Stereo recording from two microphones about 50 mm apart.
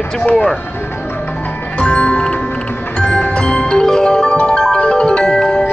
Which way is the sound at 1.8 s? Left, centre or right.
Left.